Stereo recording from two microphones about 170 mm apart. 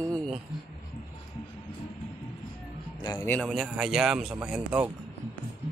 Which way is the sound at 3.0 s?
25° left (ahead or behind).